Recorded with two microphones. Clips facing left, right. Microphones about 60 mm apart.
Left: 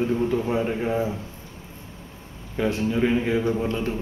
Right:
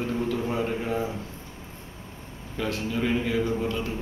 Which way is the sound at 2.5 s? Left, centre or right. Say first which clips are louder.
Left 5 dB; left.